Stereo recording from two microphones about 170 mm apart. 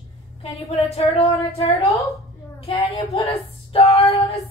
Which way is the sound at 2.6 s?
35° left (ahead or behind).